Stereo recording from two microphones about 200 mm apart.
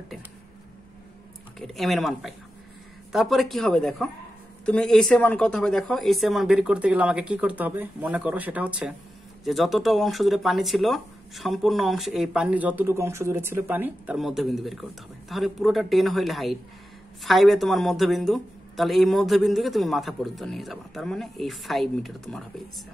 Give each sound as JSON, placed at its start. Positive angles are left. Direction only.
{"t": 1.6, "sound": "speech", "side_deg": 0}